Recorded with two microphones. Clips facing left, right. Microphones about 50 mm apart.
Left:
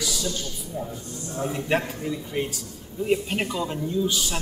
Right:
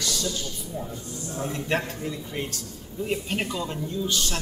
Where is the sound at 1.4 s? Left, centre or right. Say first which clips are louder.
Left 3 dB; centre.